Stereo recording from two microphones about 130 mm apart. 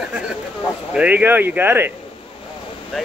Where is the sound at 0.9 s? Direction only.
10° right (ahead or behind).